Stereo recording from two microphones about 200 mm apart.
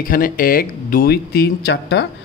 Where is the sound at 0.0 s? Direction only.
45° left (ahead or behind).